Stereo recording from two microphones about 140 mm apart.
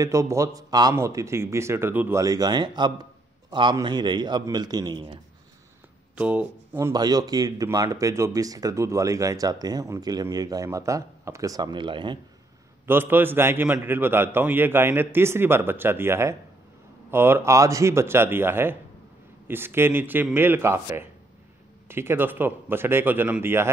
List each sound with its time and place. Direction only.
0.0 s a man's voice: 20° right (ahead or behind)
6.1 s speech: 10° right (ahead or behind)
6.9 s a man's voice: 30° right (ahead or behind)
12.8 s a man's voice: 15° right (ahead or behind)